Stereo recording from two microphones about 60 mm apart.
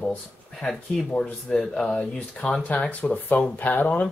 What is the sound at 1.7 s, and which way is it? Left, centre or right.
Speech, centre.